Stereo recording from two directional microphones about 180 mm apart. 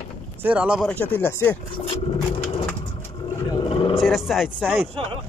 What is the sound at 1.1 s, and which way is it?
Speech, 10° left (ahead or behind).